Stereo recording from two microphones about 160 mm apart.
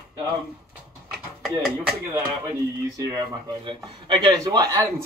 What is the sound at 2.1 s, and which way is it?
Speech, 20° right (ahead or behind).